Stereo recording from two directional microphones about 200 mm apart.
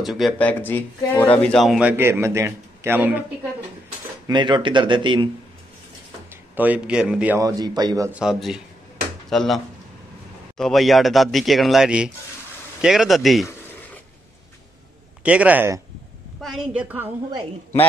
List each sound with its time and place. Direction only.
0.0 s speech: centre (ahead or behind)
4.3 s speech: 20° right (ahead or behind)
6.5 s speech: 10° right (ahead or behind)
8.1 s speech: 5° right (ahead or behind)
10.6 s speech: centre (ahead or behind)
15.2 s speech: 5° right (ahead or behind)